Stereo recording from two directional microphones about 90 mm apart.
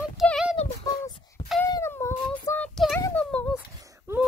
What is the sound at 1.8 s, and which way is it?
Child singing, 30° left (ahead or behind).